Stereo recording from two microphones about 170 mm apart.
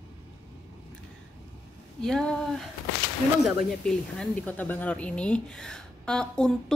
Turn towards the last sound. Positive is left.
turn(degrees=5)  # may be behind; listen again after turning